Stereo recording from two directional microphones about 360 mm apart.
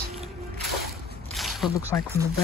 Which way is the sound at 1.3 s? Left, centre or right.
Centre.